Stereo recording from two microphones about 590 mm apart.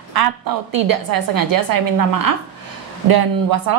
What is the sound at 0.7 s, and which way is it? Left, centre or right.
A woman's voice, right.